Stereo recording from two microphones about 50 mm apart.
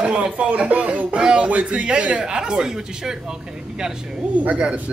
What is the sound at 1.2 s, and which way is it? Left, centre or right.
Speech, centre.